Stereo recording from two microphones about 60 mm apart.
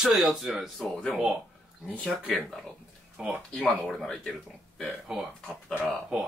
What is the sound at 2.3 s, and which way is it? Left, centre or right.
Speech, centre.